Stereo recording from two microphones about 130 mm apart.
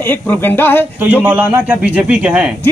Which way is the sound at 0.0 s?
15° left (ahead or behind).